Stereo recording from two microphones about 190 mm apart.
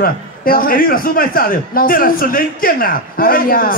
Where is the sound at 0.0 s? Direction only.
50° left (ahead or behind).